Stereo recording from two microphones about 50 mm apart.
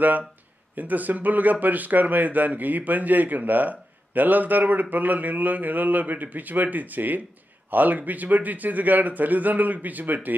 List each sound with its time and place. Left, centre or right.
0.7 s speech: right